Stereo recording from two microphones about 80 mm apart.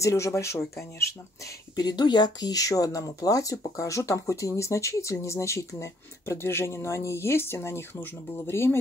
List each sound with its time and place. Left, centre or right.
0.0 s speech: left
1.8 s speech: left